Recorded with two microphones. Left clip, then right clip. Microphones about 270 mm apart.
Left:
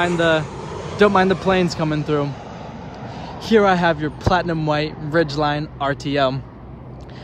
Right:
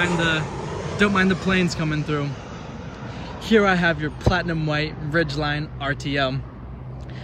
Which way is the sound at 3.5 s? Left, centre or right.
Centre.